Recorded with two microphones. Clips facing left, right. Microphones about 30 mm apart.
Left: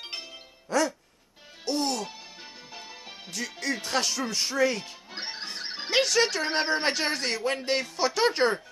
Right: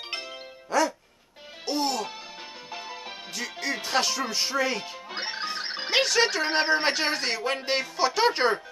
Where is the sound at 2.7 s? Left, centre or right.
Centre.